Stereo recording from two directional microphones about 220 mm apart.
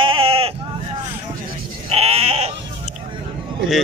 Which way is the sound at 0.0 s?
25° right (ahead or behind).